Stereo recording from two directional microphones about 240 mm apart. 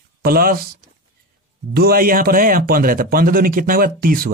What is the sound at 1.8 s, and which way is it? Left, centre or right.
A man's voice, right.